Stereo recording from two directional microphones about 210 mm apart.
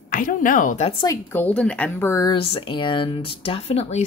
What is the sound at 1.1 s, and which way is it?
Speech, 10° left (ahead or behind).